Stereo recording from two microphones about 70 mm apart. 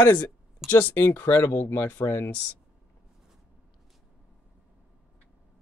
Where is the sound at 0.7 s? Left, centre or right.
Left.